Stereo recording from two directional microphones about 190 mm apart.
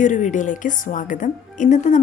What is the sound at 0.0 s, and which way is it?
A woman's voice, 40° left (ahead or behind).